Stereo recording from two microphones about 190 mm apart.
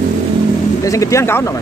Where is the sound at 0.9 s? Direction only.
15° left (ahead or behind).